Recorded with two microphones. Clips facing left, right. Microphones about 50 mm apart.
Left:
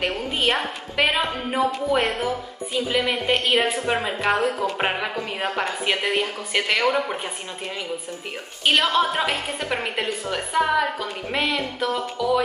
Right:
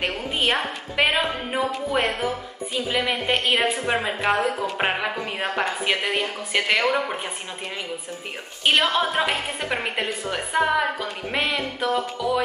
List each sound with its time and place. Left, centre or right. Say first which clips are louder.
0.5 s a woman's voice: even; centre
8.6 s a woman's voice: left 1 dB; centre